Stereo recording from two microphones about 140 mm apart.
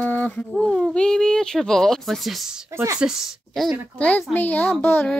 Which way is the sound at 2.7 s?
20° right (ahead or behind).